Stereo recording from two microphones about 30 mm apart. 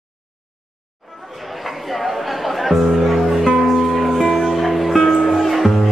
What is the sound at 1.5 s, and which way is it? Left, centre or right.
Music, centre.